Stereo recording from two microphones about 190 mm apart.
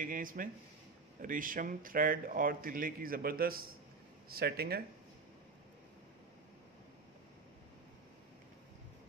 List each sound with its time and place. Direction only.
0.0 s speech: 45° right (ahead or behind)